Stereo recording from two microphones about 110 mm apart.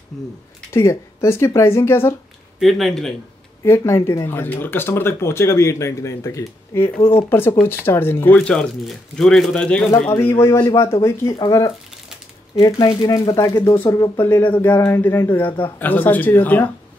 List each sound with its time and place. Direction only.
0.1 s speech: 5° left (ahead or behind)
0.7 s speech: 25° left (ahead or behind)
2.6 s speech: centre (ahead or behind)
3.6 s speech: 25° left (ahead or behind)
7.0 s speech: 60° left (ahead or behind)
7.2 s speech: 20° left (ahead or behind)
8.4 s speech: 5° left (ahead or behind)
9.8 s speech: 25° left (ahead or behind)
13.8 s speech: 35° left (ahead or behind)
14.1 s speech: 20° left (ahead or behind)